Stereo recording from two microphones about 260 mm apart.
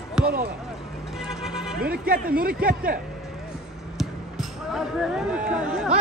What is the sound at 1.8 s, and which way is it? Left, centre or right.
Speech, right.